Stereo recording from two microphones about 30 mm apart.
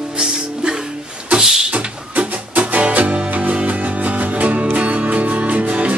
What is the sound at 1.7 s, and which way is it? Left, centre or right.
Music, right.